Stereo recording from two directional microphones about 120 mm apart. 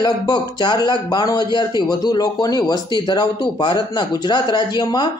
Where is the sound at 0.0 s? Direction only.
35° left (ahead or behind).